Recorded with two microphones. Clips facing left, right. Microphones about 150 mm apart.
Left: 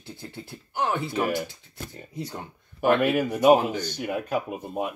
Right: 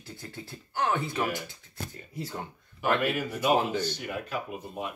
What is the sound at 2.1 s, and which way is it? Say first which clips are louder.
Speech: left 3 dB; 20° left (ahead or behind).